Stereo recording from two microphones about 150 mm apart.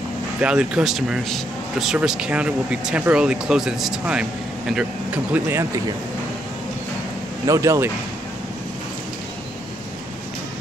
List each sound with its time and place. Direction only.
0.4 s a man's voice: 5° right (ahead or behind)
7.4 s speech: 20° right (ahead or behind)